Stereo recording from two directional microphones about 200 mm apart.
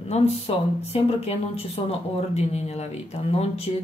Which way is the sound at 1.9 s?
35° left (ahead or behind).